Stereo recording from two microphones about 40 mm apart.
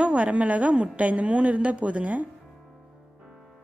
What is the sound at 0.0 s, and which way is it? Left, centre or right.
A woman's voice, right.